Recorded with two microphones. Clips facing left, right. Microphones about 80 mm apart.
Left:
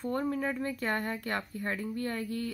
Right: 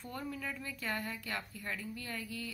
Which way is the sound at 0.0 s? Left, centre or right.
Left.